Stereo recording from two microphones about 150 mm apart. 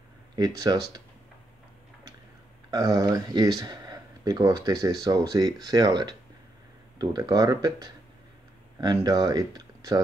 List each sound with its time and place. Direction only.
0.4 s speech: 25° right (ahead or behind)
2.7 s speech: 25° right (ahead or behind)
8.9 s speech: 25° right (ahead or behind)